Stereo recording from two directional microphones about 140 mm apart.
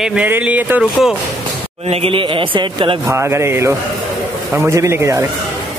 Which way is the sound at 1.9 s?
45° right (ahead or behind).